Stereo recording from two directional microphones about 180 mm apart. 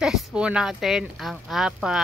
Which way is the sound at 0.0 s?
5° right (ahead or behind).